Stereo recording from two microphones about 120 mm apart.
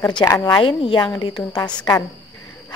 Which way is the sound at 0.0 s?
30° left (ahead or behind).